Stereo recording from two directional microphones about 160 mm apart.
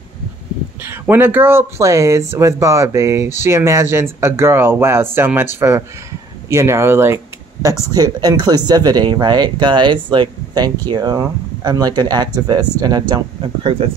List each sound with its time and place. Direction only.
0.8 s speech: 15° right (ahead or behind); by 13.8 s 35° right (ahead or behind)